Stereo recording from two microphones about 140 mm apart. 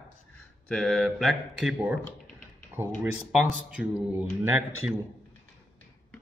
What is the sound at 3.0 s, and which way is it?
Speech, 5° right (ahead or behind).